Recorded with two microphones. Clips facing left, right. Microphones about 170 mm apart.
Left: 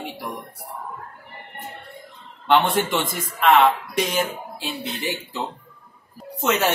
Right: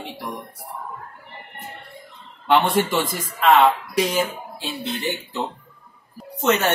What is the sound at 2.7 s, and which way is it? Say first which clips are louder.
Speech: right 2 dB; centre (ahead or behind).